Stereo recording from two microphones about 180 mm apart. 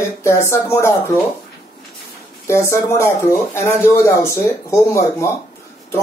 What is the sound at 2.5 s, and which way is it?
Speech, 15° left (ahead or behind).